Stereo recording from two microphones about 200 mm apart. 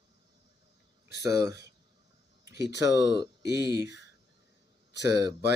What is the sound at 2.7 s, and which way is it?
Speech, 60° left (ahead or behind).